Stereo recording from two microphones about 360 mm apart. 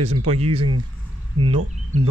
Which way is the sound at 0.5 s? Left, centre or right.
Right.